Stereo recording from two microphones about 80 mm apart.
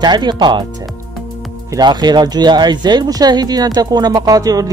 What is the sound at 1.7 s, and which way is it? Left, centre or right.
Speech, right.